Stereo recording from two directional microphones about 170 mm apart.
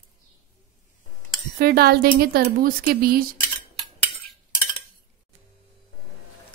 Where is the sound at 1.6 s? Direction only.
65° right (ahead or behind).